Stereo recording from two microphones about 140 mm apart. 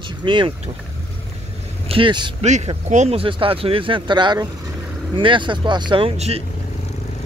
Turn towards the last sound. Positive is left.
turn(degrees=-45)  # may be behind; listen again after turning